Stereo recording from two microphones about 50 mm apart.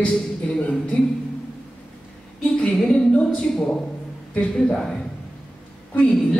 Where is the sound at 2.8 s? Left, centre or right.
Centre.